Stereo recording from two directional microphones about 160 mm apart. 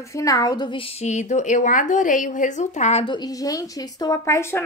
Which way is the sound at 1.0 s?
45° left (ahead or behind).